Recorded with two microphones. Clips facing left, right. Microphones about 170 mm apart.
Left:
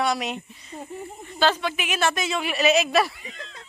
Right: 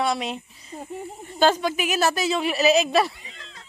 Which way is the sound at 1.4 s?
40° right (ahead or behind).